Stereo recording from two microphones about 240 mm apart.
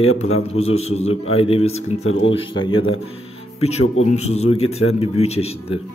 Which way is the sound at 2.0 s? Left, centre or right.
Left.